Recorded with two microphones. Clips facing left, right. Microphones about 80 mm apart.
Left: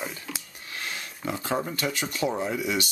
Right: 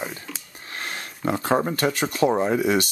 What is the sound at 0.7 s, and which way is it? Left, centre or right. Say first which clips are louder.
Speech: right 3 dB; right.